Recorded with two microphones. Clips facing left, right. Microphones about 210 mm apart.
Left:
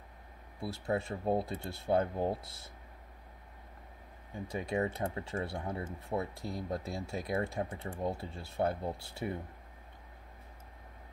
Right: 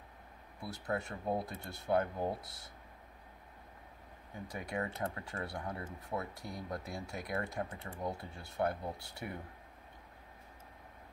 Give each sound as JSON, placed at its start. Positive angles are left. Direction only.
{"t": 0.6, "sound": "speech", "side_deg": 25}
{"t": 4.5, "sound": "speech", "side_deg": 25}